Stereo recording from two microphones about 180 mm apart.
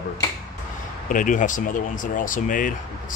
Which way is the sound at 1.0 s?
45° left (ahead or behind).